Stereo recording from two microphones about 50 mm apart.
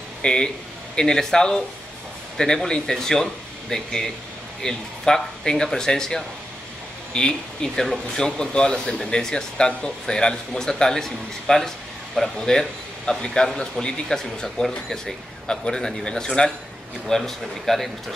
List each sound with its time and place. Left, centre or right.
0.2 s a man's voice: centre
17.1 s speech: centre